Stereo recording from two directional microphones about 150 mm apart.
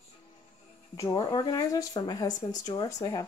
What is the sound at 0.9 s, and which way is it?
Speech, 20° left (ahead or behind).